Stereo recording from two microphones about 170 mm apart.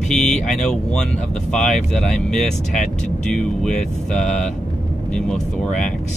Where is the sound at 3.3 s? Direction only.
5° left (ahead or behind).